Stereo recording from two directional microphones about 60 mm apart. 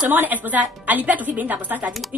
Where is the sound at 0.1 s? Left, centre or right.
Right.